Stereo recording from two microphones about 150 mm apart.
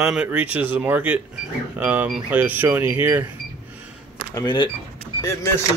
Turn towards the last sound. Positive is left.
turn(degrees=15)  # may be behind; listen again after turning